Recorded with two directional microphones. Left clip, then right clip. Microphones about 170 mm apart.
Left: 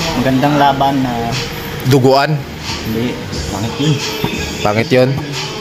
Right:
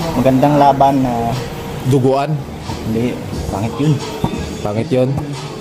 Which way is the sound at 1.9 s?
5° right (ahead or behind).